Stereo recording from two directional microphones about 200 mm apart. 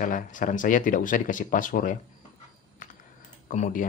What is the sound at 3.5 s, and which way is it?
Speech, 40° left (ahead or behind).